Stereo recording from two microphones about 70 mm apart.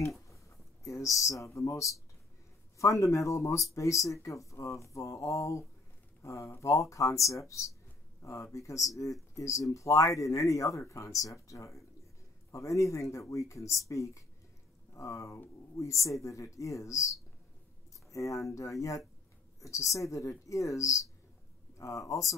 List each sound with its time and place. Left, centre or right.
0.8 s speech: left